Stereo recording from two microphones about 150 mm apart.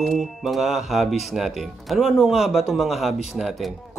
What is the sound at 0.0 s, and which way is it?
Speech, centre (ahead or behind).